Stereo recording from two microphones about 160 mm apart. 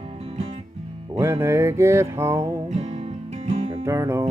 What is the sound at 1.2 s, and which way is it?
Music, 15° right (ahead or behind).